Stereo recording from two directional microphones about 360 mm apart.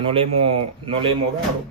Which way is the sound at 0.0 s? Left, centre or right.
Centre.